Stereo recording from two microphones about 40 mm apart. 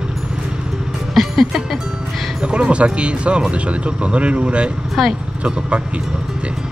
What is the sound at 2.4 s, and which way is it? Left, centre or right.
Speech, right.